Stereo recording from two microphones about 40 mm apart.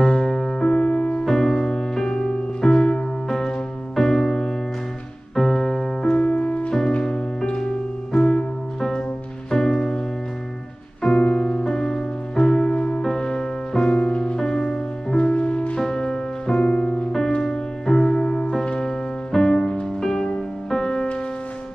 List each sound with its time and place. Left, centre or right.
0.0 s music: centre
1.2 s music: centre
6.1 s music: left
9.5 s music: centre
15.3 s music: left
15.8 s music: centre
20.0 s music: centre